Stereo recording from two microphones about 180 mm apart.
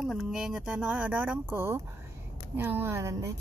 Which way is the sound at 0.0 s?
Centre (ahead or behind).